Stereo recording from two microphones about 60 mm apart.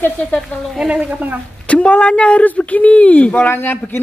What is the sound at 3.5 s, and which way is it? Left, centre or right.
Speech, left.